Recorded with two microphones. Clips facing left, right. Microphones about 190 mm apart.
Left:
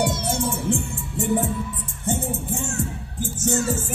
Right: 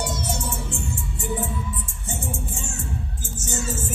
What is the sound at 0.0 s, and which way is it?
Music, 55° left (ahead or behind).